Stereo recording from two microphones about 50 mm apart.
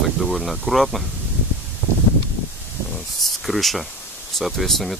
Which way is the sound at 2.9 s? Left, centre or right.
Centre.